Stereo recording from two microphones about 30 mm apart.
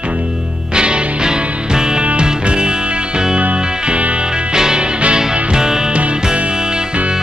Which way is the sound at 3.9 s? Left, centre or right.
Right.